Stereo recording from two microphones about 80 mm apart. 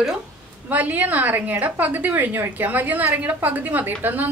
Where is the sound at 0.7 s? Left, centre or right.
Right.